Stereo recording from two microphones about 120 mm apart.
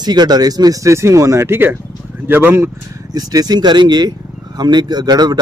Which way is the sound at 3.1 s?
35° right (ahead or behind).